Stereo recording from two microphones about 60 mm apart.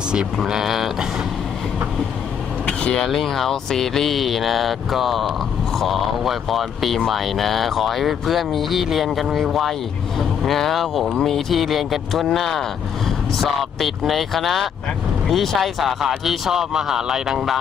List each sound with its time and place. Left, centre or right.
0.1 s speech: centre
2.6 s vehicle: centre
3.0 s speech: centre